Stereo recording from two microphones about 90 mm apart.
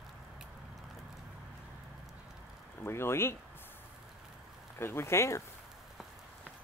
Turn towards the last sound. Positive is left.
turn(degrees=30)  # may be behind; listen again after turning